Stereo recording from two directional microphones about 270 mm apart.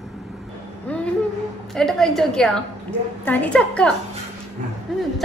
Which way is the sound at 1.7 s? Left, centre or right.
Centre.